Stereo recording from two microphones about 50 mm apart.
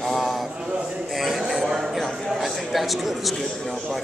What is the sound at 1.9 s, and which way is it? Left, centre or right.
A man's voice, centre.